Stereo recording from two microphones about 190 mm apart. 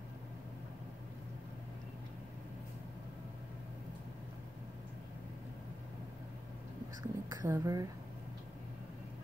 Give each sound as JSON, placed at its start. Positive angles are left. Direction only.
{"t": 7.0, "sound": "speech", "side_deg": -20}